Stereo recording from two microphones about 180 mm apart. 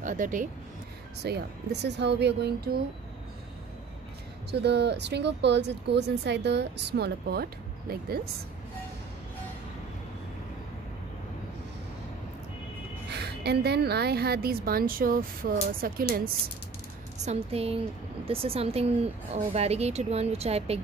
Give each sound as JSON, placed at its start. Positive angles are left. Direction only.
{"t": 0.0, "sound": "speech", "side_deg": -45}
{"t": 1.2, "sound": "speech", "side_deg": -65}
{"t": 4.5, "sound": "speech", "side_deg": -70}
{"t": 13.1, "sound": "a woman's voice", "side_deg": -65}
{"t": 17.2, "sound": "speech", "side_deg": -35}